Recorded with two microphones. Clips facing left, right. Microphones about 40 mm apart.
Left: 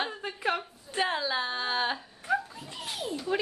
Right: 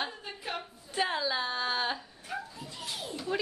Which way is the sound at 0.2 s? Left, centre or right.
Left.